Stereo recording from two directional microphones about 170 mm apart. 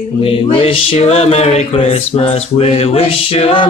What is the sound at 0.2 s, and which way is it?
Mantra, 35° left (ahead or behind).